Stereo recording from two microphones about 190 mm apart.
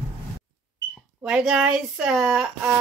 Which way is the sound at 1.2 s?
5° right (ahead or behind).